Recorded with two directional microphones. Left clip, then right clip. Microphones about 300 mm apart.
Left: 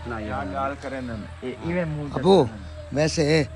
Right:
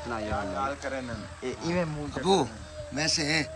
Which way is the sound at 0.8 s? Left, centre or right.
Left.